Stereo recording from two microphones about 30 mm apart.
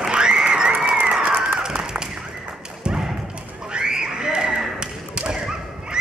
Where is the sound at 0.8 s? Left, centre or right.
Right.